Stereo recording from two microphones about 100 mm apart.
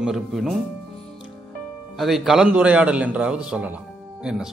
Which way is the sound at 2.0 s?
Centre (ahead or behind).